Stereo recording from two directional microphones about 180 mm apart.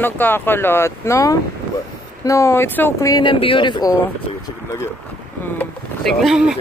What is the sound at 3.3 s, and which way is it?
Speech, 30° left (ahead or behind).